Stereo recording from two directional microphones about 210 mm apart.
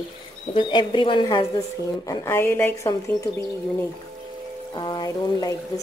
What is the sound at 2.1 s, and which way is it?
Speech, 10° left (ahead or behind).